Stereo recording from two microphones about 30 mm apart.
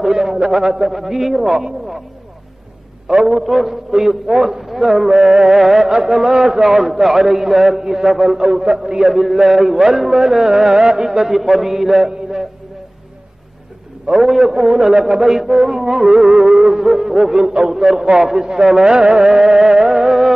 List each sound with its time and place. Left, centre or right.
0.0 s a sound: centre
0.4 s music: right
0.8 s music: centre
3.1 s music: right
3.4 s music: centre
8.1 s a man's voice: centre
8.4 s music: right
9.0 s a man's voice: centre
9.4 s music: centre; by 11.1 s right
11.1 s music: centre
14.2 s music: centre
14.5 s music: right
17.6 s music: centre
20.1 s music: centre